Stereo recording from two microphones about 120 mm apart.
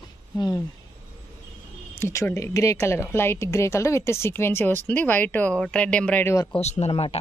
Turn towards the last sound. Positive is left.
turn(degrees=55)  # may be behind; listen again after turning